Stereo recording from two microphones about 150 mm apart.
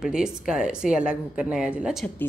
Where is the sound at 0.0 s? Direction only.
5° right (ahead or behind).